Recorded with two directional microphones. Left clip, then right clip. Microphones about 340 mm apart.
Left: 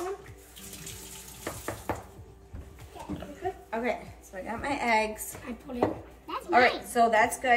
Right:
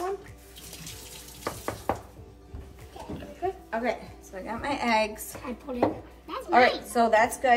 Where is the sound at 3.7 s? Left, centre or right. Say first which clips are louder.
Left 1 dB; centre.